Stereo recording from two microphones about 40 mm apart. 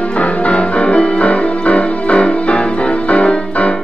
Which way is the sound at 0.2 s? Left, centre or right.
Left.